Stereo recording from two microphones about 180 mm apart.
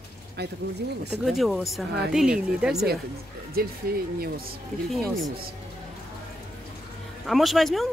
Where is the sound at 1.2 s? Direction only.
Centre (ahead or behind).